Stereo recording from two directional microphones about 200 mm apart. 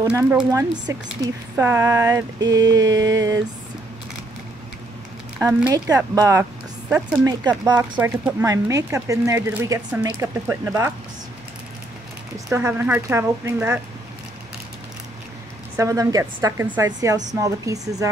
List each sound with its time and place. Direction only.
0.1 s speech: 10° right (ahead or behind)
5.4 s speech: 10° right (ahead or behind)
8.0 s speech: 10° right (ahead or behind)
12.5 s speech: 10° right (ahead or behind)
15.7 s speech: 15° right (ahead or behind)